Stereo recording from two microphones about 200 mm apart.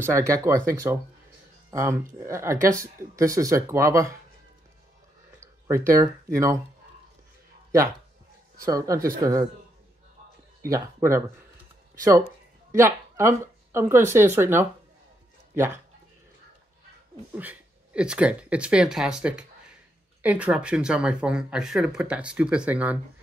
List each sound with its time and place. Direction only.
0.0 s speech: 15° right (ahead or behind)
5.4 s speech: 15° right (ahead or behind)
8.6 s speech: 15° right (ahead or behind)
10.7 s speech: 15° right (ahead or behind)
12.7 s speech: 15° right (ahead or behind)
17.3 s speech: 10° right (ahead or behind)